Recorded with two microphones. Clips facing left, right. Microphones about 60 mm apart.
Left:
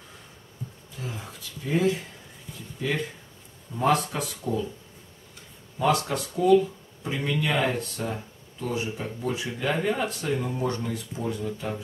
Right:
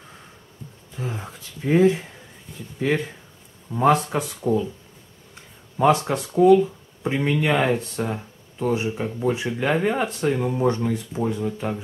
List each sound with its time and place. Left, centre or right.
0.9 s speech: right
3.7 s speech: right
5.8 s speech: right